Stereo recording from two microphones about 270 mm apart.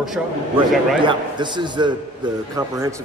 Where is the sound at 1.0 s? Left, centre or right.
Centre.